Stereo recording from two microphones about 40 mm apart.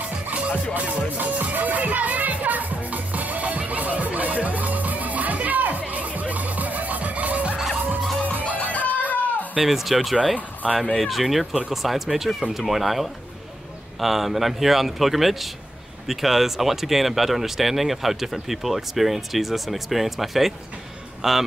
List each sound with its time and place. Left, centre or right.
0.3 s music: right
8.7 s music: left
9.6 s speech: centre
10.3 s speech: right
11.0 s a man's voice: centre